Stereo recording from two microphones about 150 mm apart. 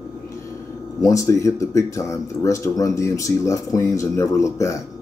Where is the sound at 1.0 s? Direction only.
20° left (ahead or behind).